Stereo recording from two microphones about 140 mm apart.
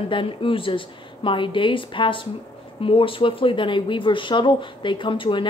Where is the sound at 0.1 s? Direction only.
40° left (ahead or behind).